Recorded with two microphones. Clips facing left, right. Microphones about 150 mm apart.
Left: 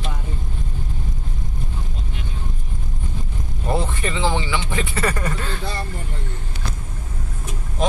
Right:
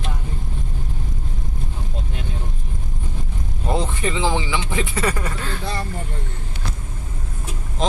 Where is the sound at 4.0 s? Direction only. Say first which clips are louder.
Right 1 dB; 15° right (ahead or behind).